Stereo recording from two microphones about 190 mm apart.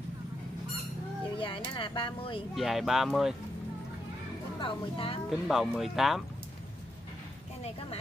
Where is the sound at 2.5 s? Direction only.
Centre (ahead or behind).